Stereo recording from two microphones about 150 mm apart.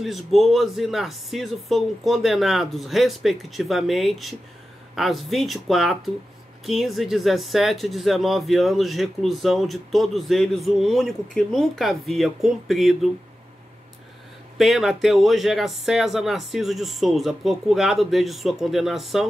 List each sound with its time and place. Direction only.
0.0 s speech: centre (ahead or behind)
14.6 s speech: centre (ahead or behind)